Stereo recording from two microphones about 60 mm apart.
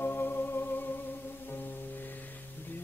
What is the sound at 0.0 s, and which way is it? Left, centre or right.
Music, left.